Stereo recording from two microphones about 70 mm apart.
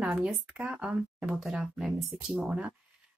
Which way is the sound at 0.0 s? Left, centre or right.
Centre.